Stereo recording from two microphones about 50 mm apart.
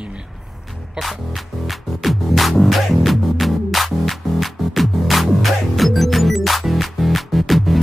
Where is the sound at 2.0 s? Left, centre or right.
Centre.